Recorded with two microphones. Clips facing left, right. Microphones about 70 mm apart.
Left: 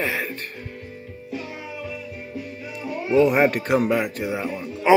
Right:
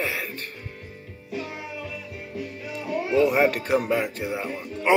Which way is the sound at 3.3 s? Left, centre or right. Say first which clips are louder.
Left 2 dB; left.